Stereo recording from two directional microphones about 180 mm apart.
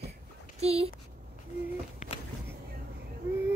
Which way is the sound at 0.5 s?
35° right (ahead or behind).